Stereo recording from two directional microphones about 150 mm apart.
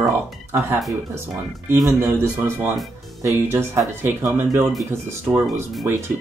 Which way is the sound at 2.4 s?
15° right (ahead or behind).